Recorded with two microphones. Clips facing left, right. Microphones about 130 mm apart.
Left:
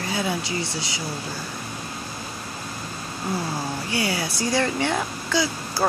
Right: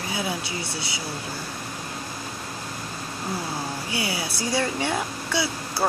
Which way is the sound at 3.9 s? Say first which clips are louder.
Left 5 dB; 5° right (ahead or behind).